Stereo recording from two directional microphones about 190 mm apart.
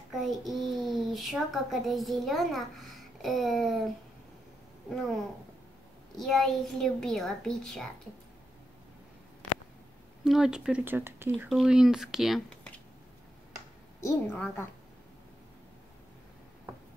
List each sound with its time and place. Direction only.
0.1 s a child's voice: centre (ahead or behind)
10.2 s speech: 5° right (ahead or behind)
11.3 s a child's voice: centre (ahead or behind)
14.0 s a woman's voice: 10° left (ahead or behind)